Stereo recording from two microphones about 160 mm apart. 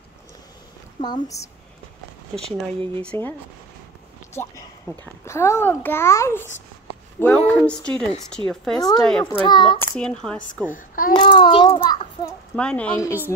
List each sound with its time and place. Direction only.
1.0 s a child's voice: 25° left (ahead or behind)
3.0 s a child's voice: 10° left (ahead or behind)
9.3 s a child's voice: 30° left (ahead or behind)
9.9 s speech: 5° left (ahead or behind)
10.7 s a child's voice: 60° left (ahead or behind)
11.1 s a child's voice: 30° left (ahead or behind)
12.5 s speech: 5° left (ahead or behind)